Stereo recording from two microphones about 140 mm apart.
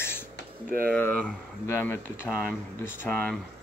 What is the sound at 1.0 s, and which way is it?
Speech, 10° left (ahead or behind).